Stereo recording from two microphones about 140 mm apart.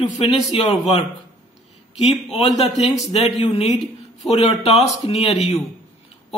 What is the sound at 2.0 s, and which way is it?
Speech, 50° left (ahead or behind).